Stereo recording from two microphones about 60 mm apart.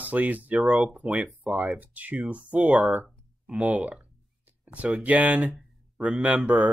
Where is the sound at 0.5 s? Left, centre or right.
Centre.